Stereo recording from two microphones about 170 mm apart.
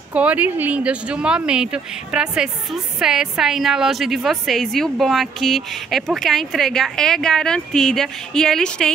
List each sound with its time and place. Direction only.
0.1 s speech: 10° right (ahead or behind)